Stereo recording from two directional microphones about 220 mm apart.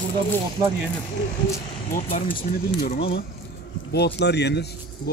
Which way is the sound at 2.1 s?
40° left (ahead or behind).